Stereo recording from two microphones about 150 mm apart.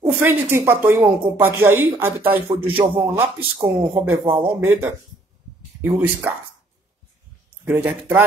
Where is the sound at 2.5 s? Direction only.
35° right (ahead or behind).